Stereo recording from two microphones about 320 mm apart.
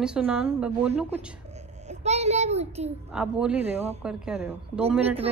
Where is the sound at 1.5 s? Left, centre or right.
Right.